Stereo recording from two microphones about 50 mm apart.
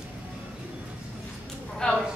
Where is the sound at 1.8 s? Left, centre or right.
Centre.